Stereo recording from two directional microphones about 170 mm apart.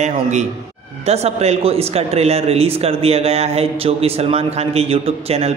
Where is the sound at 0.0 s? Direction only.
45° right (ahead or behind).